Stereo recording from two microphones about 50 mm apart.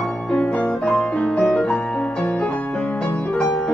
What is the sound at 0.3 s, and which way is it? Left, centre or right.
Piano, left.